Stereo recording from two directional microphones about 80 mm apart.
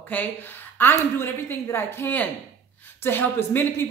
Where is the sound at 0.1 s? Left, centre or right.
Centre.